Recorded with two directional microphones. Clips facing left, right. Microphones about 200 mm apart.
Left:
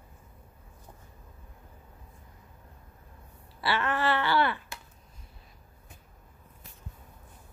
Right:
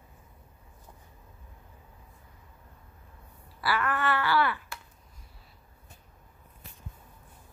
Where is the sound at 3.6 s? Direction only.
25° left (ahead or behind).